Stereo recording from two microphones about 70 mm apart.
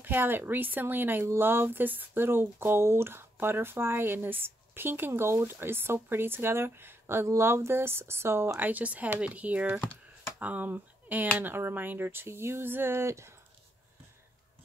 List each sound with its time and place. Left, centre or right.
0.0 s speech: right
8.5 s speech: right